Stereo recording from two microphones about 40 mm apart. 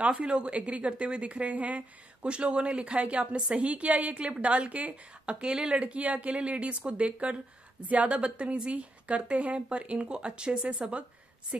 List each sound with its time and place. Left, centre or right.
0.1 s a woman's voice: right
5.3 s a woman's voice: right